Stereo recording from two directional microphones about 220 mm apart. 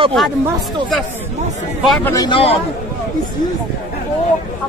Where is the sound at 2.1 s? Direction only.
20° left (ahead or behind).